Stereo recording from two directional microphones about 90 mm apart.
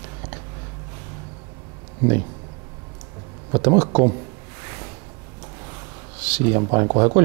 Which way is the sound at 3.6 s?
15° right (ahead or behind).